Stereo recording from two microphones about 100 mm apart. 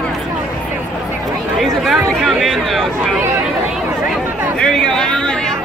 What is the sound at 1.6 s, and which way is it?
Speech, centre (ahead or behind).